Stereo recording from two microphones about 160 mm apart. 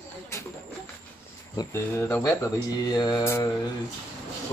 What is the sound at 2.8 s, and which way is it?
Mantra, 25° left (ahead or behind).